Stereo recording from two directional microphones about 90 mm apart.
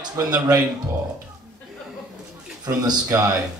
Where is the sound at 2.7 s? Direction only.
40° right (ahead or behind).